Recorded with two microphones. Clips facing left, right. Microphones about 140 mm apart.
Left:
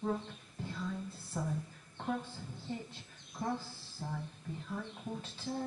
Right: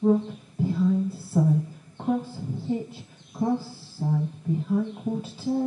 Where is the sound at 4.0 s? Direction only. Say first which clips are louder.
Right 15 dB; 20° right (ahead or behind).